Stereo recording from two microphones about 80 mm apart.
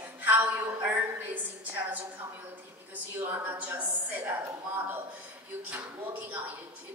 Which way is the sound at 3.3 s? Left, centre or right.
Right.